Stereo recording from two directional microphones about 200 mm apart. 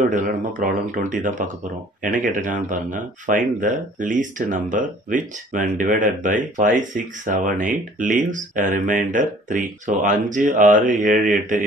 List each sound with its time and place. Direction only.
0.1 s speech: 40° right (ahead or behind)